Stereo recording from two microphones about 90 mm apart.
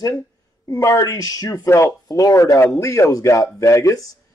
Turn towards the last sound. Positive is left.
turn(degrees=40)  # may be behind; listen again after turning